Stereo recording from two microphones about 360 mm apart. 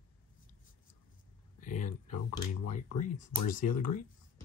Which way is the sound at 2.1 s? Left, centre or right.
Left.